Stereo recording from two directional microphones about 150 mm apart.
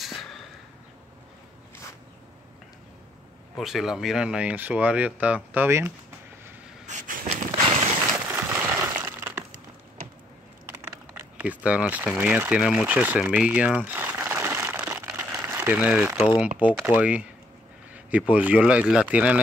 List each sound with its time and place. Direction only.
3.5 s speech: centre (ahead or behind)
6.9 s vehicle: 55° right (ahead or behind)
8.3 s a sound: 15° right (ahead or behind)
11.1 s speech: 10° right (ahead or behind)
12.2 s a sound: 10° right (ahead or behind)
16.3 s speech: 10° right (ahead or behind)